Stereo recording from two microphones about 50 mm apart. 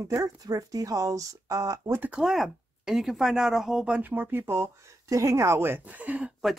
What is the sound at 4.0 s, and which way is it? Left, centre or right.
Speech, right.